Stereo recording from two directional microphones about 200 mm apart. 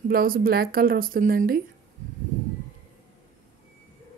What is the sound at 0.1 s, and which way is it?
Speech, 45° right (ahead or behind).